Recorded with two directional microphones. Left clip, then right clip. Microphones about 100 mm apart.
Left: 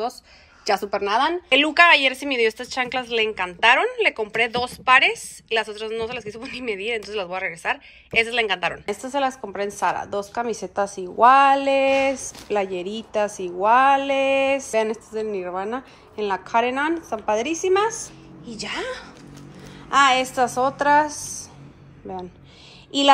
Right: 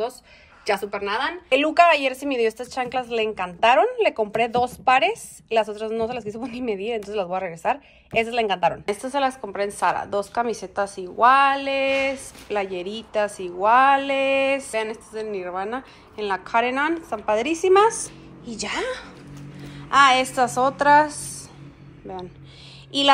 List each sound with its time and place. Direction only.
0.8 s speech: 40° left (ahead or behind)
1.5 s a woman's voice: 5° right (ahead or behind)
8.9 s a woman's voice: 30° left (ahead or behind)
10.8 s speech: 40° left (ahead or behind); by 18.9 s 20° left (ahead or behind)
19.9 s a woman's voice: 30° left (ahead or behind)
22.9 s child singing: 45° left (ahead or behind)